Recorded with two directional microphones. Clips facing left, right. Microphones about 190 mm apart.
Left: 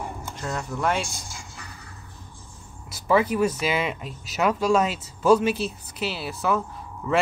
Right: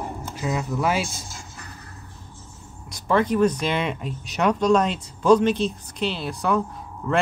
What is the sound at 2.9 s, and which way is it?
Speech, 5° left (ahead or behind).